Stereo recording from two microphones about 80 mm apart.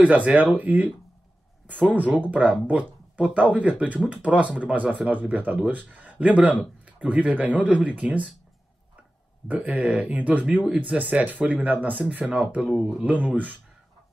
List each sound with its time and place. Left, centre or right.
0.0 s speech: centre
9.5 s speech: centre
12.6 s speech: centre
13.0 s speech: centre